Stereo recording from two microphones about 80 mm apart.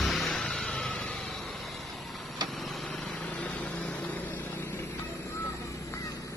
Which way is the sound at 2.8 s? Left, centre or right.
Centre.